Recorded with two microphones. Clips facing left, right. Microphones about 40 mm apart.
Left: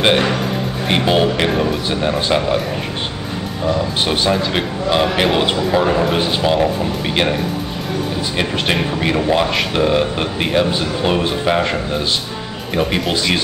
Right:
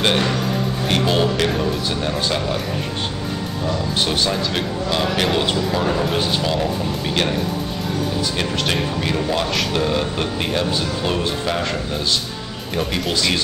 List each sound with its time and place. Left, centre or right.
0.0 s speech: left
3.6 s speech: left
8.4 s speech: left